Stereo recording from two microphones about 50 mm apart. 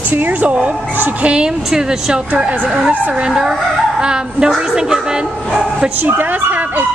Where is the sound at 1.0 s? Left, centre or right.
Right.